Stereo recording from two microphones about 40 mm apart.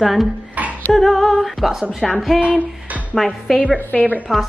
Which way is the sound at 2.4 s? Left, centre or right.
Right.